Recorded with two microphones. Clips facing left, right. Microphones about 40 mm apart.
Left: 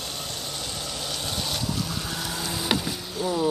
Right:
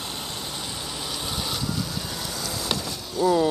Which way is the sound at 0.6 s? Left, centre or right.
Centre.